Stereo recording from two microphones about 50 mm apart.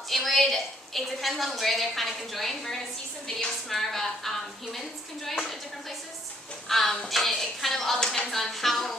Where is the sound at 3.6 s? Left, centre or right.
Centre.